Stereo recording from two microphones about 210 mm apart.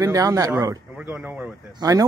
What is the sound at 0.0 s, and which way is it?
Speech, 15° right (ahead or behind).